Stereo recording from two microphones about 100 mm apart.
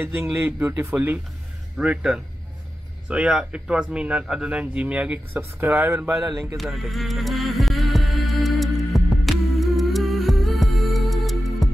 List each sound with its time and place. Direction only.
0.0 s a man's voice: 20° right (ahead or behind)
6.5 s music: centre (ahead or behind)